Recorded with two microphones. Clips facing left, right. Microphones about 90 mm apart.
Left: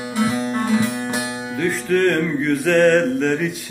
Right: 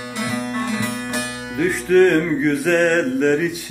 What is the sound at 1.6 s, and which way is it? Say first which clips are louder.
Music: right 4 dB; 5° right (ahead or behind).